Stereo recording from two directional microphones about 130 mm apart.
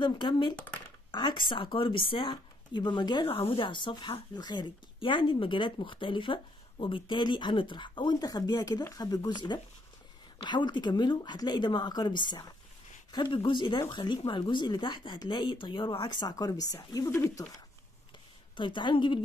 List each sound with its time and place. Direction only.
0.0 s speech: 35° left (ahead or behind); by 17.5 s 20° left (ahead or behind)
18.6 s speech: 40° left (ahead or behind)